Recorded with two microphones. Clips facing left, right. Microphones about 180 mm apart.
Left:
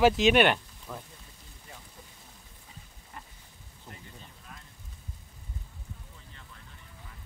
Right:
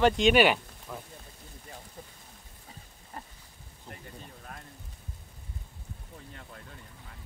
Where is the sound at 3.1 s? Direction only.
35° right (ahead or behind).